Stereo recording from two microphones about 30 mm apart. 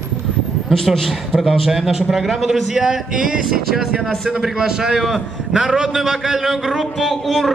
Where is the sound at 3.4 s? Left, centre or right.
Centre.